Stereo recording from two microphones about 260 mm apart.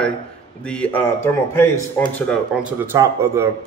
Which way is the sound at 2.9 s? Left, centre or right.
Centre.